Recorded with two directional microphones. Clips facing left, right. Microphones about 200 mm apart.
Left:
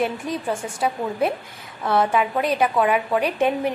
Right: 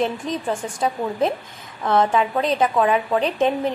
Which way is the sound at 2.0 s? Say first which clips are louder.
Right 1 dB; 25° right (ahead or behind).